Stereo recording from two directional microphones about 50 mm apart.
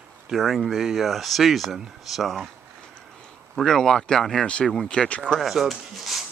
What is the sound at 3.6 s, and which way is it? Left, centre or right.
Speech, centre.